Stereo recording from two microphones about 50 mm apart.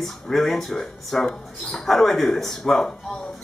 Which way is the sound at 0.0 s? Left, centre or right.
Centre.